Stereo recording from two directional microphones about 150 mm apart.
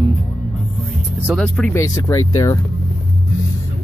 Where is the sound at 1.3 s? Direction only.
5° left (ahead or behind).